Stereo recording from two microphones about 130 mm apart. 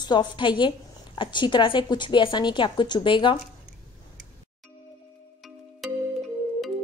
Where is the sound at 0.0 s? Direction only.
35° left (ahead or behind).